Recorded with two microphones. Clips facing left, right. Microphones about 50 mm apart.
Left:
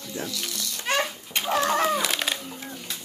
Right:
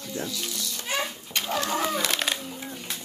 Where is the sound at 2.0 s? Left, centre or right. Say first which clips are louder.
Even; centre.